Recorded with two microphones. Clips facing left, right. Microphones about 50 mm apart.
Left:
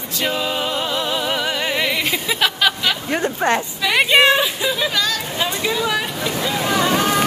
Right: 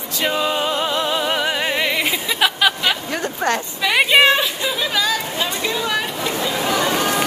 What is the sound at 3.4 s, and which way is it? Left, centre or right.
Speech, left.